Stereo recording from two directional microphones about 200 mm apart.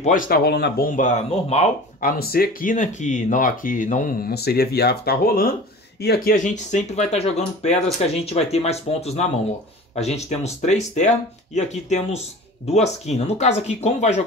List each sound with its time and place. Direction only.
0.0 s speech: 45° left (ahead or behind)